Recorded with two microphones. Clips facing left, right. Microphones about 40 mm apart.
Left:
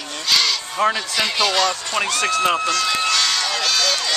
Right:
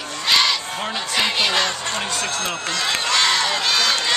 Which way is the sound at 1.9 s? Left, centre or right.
Left.